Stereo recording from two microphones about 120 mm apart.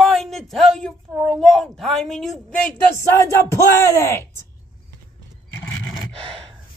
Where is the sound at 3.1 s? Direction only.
25° left (ahead or behind).